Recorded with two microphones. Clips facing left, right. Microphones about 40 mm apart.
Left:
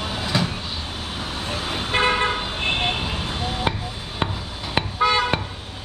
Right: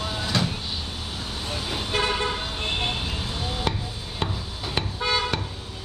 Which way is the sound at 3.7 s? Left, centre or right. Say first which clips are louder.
Left 3 dB; left.